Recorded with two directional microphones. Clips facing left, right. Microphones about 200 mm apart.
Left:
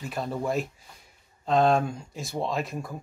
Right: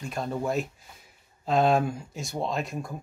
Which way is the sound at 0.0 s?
Centre (ahead or behind).